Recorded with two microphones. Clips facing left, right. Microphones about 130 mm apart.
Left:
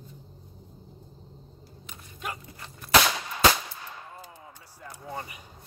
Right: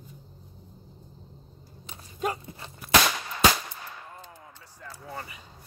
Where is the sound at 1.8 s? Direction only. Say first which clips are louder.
Right 7 dB; 35° right (ahead or behind).